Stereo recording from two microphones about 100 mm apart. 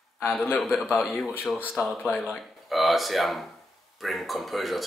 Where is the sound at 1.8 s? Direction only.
25° left (ahead or behind).